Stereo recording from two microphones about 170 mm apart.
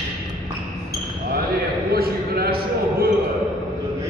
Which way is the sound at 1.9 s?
65° right (ahead or behind).